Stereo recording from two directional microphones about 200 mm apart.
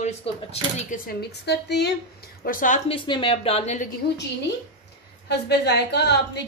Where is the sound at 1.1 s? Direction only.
55° left (ahead or behind).